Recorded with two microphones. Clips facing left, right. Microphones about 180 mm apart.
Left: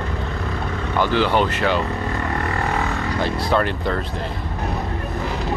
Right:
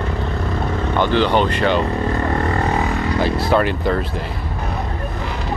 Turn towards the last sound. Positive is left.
turn(degrees=-5)  # may be behind; listen again after turning